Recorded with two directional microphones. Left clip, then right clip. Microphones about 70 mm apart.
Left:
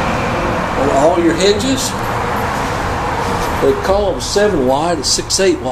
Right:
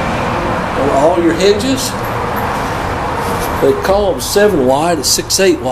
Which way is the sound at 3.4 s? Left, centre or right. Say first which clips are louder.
Right 2 dB; right.